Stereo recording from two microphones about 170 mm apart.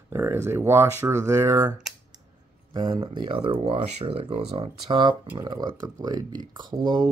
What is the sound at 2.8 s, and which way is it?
Speech, 25° right (ahead or behind).